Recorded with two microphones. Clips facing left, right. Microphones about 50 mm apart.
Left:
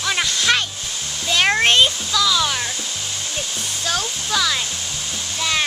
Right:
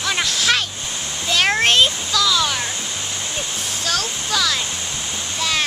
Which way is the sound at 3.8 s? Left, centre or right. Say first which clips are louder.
Even; centre.